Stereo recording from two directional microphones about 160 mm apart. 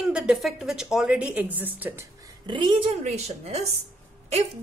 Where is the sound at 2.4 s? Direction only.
30° right (ahead or behind).